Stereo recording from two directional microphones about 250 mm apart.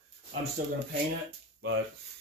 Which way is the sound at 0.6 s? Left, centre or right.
Right.